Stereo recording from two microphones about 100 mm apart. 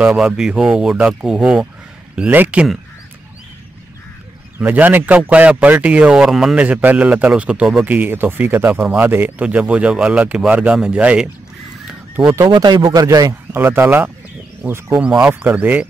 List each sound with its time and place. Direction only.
0.0 s speech: 10° right (ahead or behind)
4.6 s speech: 15° right (ahead or behind)
11.9 s goose: 10° right (ahead or behind)
12.4 s a man's voice: 50° right (ahead or behind)
13.5 s speech: 25° right (ahead or behind)
15.2 s speech: 10° right (ahead or behind)